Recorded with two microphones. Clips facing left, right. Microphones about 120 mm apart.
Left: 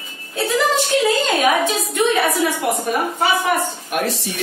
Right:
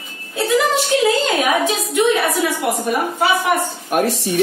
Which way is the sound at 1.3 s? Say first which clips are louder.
Even; 15° right (ahead or behind).